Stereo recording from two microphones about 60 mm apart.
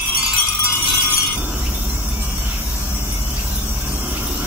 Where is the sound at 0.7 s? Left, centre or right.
Left.